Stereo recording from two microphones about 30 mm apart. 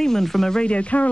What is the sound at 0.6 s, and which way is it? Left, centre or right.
Speech, left.